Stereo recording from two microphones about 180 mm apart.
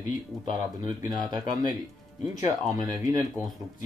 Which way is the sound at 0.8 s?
25° right (ahead or behind).